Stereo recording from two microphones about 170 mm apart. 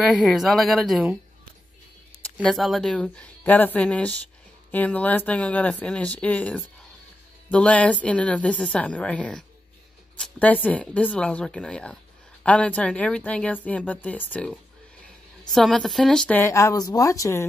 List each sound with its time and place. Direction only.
0.0 s speech: centre (ahead or behind)
2.4 s a woman's voice: centre (ahead or behind); by 17.5 s 15° left (ahead or behind)